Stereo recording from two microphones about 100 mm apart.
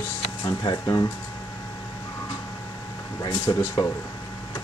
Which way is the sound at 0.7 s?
40° left (ahead or behind).